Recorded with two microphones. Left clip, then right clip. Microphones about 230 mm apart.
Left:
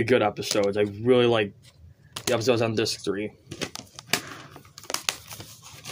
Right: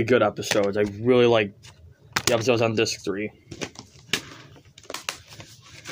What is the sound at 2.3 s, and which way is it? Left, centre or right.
Speech, centre.